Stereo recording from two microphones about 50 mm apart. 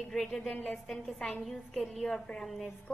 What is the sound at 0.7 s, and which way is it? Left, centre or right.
Speech, centre.